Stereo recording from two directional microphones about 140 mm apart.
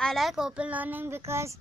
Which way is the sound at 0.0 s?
Centre (ahead or behind).